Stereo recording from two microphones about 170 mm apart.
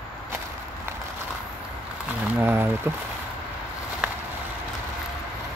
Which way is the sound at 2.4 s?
15° right (ahead or behind).